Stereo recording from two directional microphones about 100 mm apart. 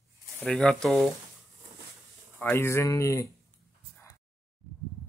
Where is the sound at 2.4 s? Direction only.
25° left (ahead or behind).